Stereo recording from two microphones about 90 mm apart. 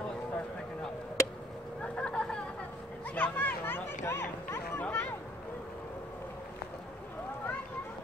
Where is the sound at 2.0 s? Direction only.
10° left (ahead or behind); by 4.8 s 25° left (ahead or behind).